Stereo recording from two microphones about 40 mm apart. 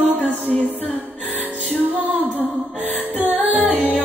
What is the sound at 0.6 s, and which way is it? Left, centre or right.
Music, right.